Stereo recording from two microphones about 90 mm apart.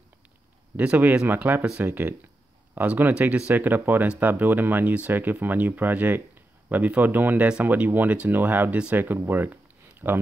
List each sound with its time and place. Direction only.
0.7 s speech: 15° right (ahead or behind)